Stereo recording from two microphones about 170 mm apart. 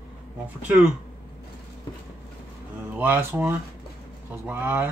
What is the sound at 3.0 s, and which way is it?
Speech, 15° right (ahead or behind).